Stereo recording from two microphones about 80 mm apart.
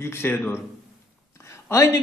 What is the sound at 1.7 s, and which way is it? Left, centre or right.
Speech, left.